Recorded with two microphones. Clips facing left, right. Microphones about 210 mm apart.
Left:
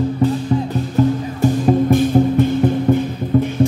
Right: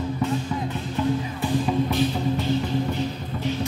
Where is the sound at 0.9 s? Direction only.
45° left (ahead or behind).